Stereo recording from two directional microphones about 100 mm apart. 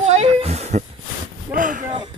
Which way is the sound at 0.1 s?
90° right.